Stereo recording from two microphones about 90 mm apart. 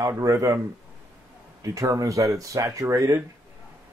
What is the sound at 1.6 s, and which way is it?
Speech, 40° right (ahead or behind).